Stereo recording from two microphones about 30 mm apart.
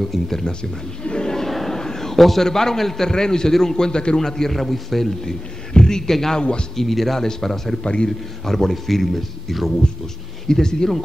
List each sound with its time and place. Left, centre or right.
0.0 s speech: centre
1.0 s crowd: left
1.7 s a sound: centre
2.4 s a man's voice: centre
4.3 s speech: centre
4.6 s a man's voice: centre
5.2 s a man's voice: left
6.8 s a man's voice: centre
7.8 s a man's voice: left
8.5 s speech: centre
10.5 s a man's voice: left